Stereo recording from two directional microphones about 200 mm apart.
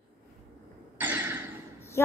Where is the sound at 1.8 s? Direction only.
10° left (ahead or behind).